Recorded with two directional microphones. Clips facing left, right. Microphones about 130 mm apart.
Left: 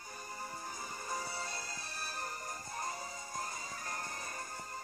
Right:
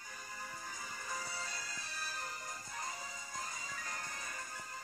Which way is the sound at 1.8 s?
55° left (ahead or behind).